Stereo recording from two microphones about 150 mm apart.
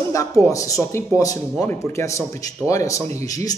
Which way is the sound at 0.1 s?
20° left (ahead or behind).